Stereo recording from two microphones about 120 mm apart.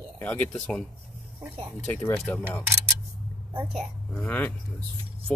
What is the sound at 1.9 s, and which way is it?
Speech, 15° left (ahead or behind).